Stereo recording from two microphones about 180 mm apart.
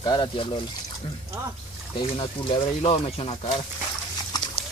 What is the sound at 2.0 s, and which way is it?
Speech, 30° left (ahead or behind).